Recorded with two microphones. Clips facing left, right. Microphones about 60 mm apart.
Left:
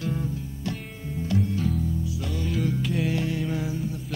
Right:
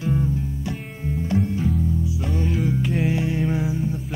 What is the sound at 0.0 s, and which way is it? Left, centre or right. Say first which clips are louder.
Music: right 6 dB; centre.